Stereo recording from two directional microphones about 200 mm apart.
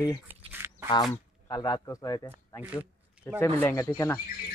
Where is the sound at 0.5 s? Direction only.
10° right (ahead or behind).